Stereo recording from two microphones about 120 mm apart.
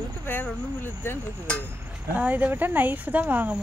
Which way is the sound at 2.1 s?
15° right (ahead or behind).